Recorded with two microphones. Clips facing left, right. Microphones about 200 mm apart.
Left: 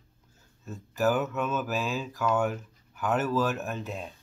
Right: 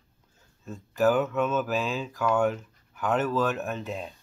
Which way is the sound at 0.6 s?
5° left (ahead or behind).